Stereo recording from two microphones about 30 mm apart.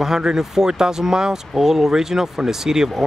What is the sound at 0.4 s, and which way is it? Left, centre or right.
Speech, centre.